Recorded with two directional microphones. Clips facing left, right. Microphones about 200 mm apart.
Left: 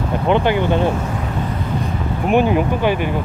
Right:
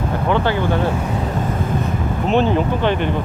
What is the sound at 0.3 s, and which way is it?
Speech, 15° left (ahead or behind).